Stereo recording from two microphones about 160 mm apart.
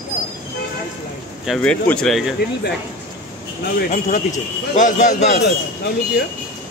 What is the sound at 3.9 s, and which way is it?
A man's voice, 50° left (ahead or behind).